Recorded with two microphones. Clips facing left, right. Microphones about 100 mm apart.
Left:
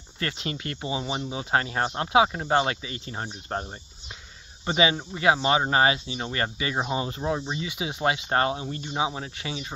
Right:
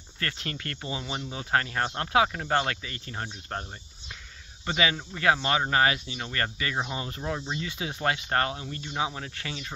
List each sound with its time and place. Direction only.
0.2 s speech: 20° left (ahead or behind)
4.6 s speech: 20° left (ahead or behind)